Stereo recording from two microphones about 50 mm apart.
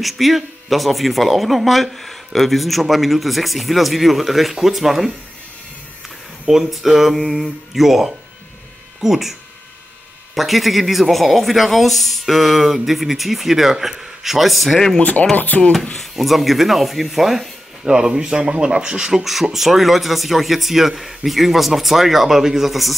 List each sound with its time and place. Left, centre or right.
0.0 s speech: centre
6.4 s speech: centre
15.0 s speech: left
16.0 s speech: centre